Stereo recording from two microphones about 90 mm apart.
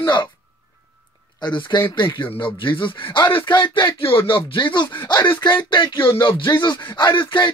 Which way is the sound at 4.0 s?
90° left.